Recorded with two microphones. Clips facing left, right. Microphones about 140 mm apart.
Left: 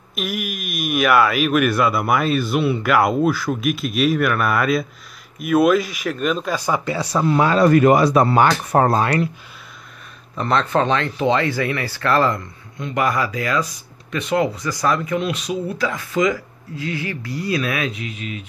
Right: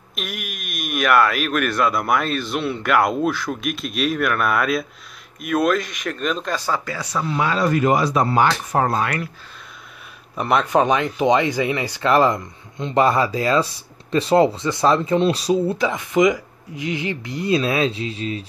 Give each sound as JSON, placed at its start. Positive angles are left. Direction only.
{"t": 0.1, "sound": "speech", "side_deg": 5}
{"t": 6.8, "sound": "speech", "side_deg": 25}
{"t": 7.1, "sound": "speech", "side_deg": 40}
{"t": 8.8, "sound": "speech", "side_deg": 35}
{"t": 10.3, "sound": "speech", "side_deg": -10}
{"t": 15.8, "sound": "speech", "side_deg": -20}